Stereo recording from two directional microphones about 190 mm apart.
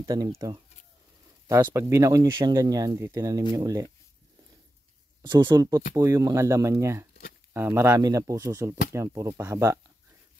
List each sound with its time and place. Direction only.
0.0 s speech: 20° right (ahead or behind)
1.5 s speech: 15° right (ahead or behind)
5.2 s speech: 25° right (ahead or behind)